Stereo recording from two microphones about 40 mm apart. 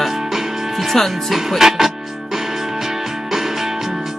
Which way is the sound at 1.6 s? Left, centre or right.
Centre.